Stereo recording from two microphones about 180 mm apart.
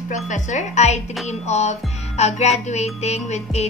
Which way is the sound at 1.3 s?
40° left (ahead or behind).